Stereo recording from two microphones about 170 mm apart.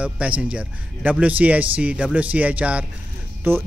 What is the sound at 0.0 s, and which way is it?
A man's voice, 5° right (ahead or behind).